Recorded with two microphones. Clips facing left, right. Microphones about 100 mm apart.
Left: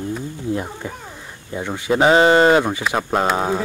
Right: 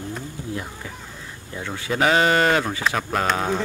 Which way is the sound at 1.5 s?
25° left (ahead or behind).